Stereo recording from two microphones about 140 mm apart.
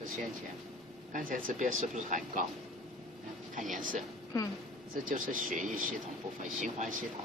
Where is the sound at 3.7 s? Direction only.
70° right (ahead or behind).